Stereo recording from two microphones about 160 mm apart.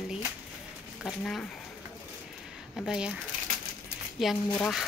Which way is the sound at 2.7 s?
5° right (ahead or behind).